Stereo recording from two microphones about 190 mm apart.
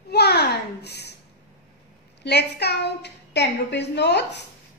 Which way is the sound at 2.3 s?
60° left (ahead or behind).